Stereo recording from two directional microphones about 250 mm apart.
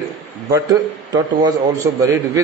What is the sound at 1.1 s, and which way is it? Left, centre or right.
A man's voice, centre.